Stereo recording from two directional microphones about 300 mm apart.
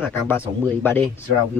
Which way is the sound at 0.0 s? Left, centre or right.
Centre.